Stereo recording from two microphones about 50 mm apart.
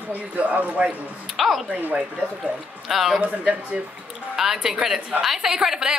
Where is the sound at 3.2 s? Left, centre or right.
Right.